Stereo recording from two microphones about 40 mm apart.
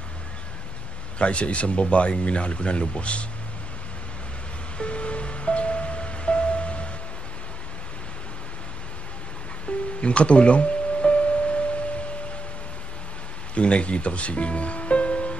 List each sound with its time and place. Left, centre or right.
1.1 s speech: left
4.7 s music: left
9.7 s music: left
13.6 s speech: left